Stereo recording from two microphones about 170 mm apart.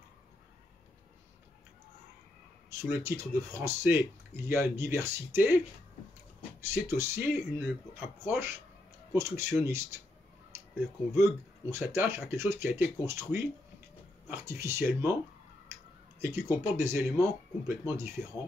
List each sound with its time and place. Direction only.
2.7 s speech: 15° right (ahead or behind)
6.7 s speech: 15° right (ahead or behind)
11.7 s speech: 15° right (ahead or behind)
16.2 s speech: 15° right (ahead or behind)